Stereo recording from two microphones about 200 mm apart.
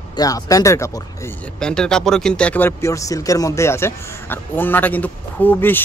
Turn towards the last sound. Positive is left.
turn(degrees=10)  # may be behind; listen again after turning